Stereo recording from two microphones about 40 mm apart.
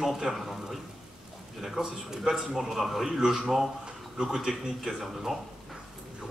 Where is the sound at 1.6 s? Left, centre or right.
Centre.